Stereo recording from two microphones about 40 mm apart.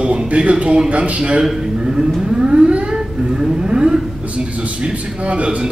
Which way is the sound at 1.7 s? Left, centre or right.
Centre.